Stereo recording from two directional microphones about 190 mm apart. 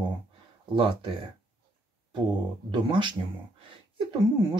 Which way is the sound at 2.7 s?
25° right (ahead or behind).